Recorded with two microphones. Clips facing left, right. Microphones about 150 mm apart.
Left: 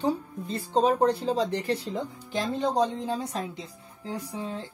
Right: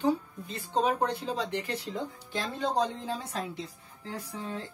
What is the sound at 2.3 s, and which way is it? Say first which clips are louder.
A woman's voice: left 4 dB; 15° left (ahead or behind).